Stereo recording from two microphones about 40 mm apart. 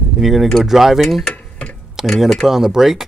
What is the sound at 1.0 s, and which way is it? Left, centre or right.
Speech, centre.